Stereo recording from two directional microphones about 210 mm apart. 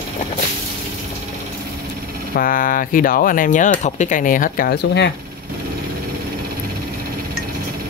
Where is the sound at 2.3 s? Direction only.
40° left (ahead or behind).